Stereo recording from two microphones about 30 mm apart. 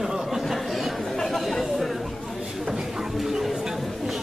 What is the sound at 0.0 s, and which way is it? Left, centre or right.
Chatter, centre.